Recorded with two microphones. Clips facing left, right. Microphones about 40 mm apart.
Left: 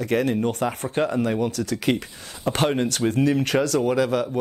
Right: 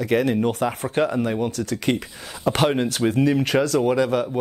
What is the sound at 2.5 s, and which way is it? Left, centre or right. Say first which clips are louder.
Speech: right 2 dB; right.